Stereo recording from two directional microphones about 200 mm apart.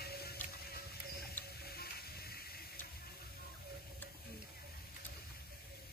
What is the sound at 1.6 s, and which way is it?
Music, 50° left (ahead or behind).